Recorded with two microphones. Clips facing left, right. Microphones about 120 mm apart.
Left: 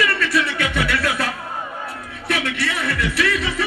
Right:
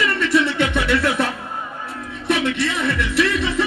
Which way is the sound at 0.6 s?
20° right (ahead or behind).